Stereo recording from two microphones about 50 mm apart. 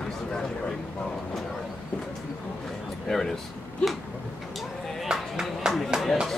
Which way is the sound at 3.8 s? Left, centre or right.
Left.